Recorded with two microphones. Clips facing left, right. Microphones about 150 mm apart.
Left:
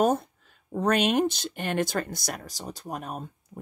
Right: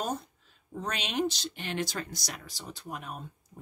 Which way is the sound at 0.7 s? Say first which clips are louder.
Left 9 dB; 55° left (ahead or behind).